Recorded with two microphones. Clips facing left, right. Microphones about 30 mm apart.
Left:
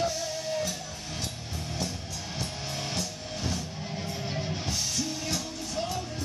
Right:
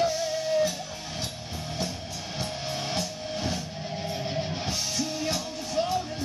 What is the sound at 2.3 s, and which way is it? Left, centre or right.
Music, centre.